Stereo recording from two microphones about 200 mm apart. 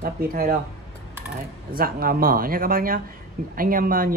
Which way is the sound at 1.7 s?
50° right (ahead or behind).